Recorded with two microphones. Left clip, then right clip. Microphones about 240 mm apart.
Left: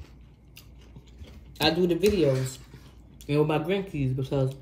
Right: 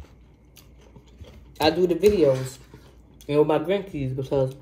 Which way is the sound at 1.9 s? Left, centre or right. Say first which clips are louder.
Right 5 dB; right.